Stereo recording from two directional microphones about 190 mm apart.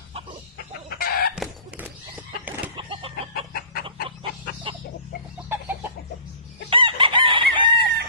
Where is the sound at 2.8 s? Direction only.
25° right (ahead or behind).